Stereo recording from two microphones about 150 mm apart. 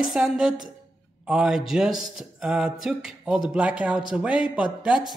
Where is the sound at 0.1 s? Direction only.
5° right (ahead or behind).